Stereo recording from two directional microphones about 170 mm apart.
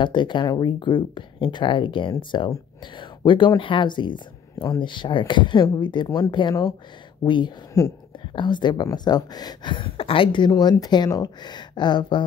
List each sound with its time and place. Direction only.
0.0 s speech: 25° left (ahead or behind)